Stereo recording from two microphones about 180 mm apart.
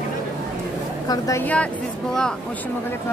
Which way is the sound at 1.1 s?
15° left (ahead or behind).